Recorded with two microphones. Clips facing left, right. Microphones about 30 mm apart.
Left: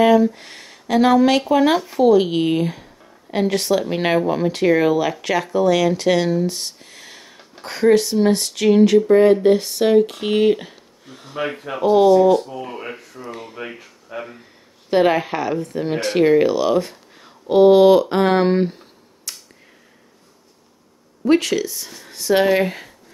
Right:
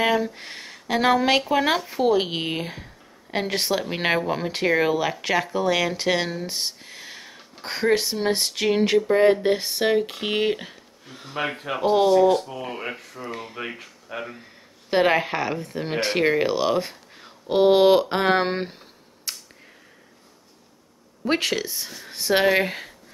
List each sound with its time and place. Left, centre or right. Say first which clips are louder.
0.0 s speech: left 8 dB; centre
11.4 s speech: left 3 dB; right
12.4 s speech: left 1 dB; centre
14.1 s speech: left 2 dB; right
14.9 s speech: left 3 dB; centre
19.3 s a sound: right 1 dB; centre
21.3 s speech: left 7 dB; centre